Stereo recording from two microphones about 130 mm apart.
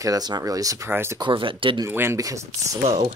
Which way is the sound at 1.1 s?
40° right (ahead or behind).